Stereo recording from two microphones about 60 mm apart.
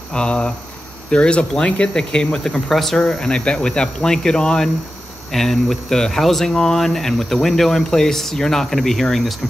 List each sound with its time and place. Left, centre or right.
0.1 s speech: centre